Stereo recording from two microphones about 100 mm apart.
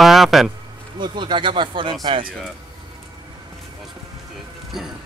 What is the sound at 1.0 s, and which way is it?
Speech, 50° right (ahead or behind).